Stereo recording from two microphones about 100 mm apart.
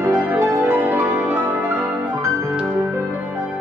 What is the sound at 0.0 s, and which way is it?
Music, 30° right (ahead or behind).